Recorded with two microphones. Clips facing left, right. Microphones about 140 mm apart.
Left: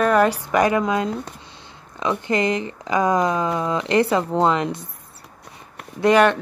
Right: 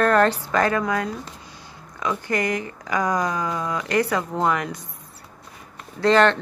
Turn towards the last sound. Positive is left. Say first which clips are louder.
# left 2 dB
turn(degrees=10)  # may be behind; listen again after turning